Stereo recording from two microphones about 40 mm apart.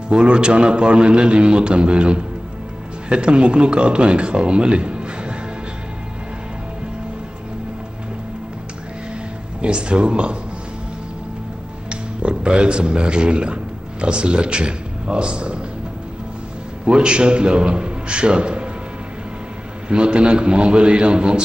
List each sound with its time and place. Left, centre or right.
0.1 s speech: right
9.6 s speech: right
11.9 s a man's voice: right
16.8 s a man's voice: right
19.9 s speech: right